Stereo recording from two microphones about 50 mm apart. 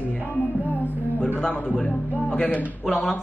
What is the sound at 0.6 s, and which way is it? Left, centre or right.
Speech, left.